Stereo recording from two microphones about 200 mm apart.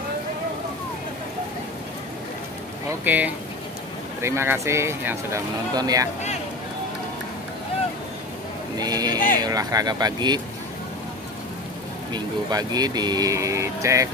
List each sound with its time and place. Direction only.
3.0 s speech: 10° right (ahead or behind)
8.7 s speech: 20° right (ahead or behind)
12.1 s speech: 20° right (ahead or behind)